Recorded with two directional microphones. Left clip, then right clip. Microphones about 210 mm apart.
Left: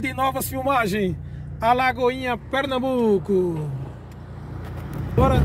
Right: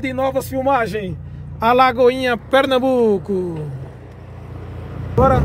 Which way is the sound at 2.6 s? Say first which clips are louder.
Right 9 dB; 25° right (ahead or behind).